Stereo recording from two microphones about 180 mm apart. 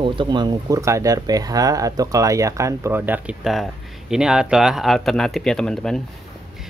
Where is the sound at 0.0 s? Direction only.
30° right (ahead or behind).